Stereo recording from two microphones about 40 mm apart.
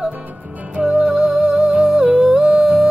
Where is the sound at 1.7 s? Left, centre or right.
Right.